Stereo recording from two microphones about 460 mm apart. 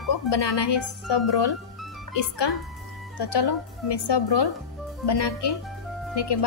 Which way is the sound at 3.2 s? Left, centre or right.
Left.